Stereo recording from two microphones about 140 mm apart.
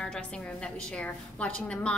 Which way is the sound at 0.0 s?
5° left (ahead or behind).